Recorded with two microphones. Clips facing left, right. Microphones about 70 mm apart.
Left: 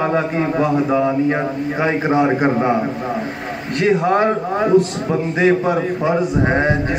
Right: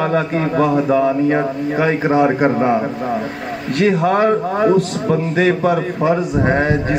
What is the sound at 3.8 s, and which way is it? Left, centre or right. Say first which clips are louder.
Music: right 1 dB; centre.